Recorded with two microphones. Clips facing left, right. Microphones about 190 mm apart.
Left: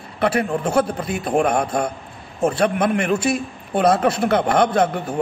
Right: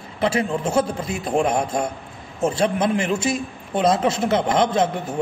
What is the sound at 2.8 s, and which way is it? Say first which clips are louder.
A man's voice: left 2 dB; 25° right (ahead or behind).